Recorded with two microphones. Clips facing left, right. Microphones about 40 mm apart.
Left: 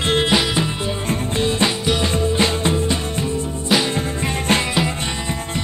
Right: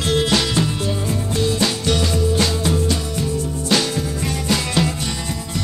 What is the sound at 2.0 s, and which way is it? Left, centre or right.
Music, left.